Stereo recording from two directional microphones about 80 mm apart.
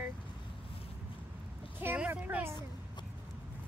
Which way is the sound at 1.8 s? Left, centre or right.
Centre.